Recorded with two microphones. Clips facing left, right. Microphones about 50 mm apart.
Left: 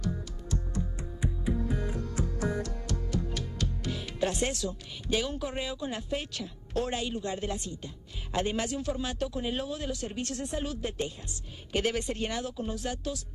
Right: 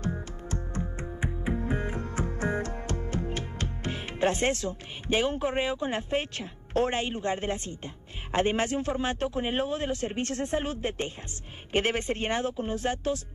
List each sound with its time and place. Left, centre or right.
0.0 s music: right
11.7 s speech: right